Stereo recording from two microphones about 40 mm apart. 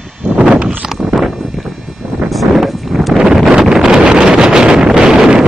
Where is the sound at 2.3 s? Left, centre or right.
Centre.